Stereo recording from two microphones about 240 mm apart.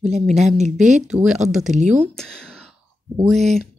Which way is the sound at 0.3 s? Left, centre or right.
Centre.